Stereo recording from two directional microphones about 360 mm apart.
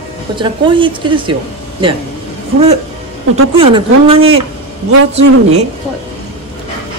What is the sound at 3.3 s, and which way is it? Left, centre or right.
Speech, centre.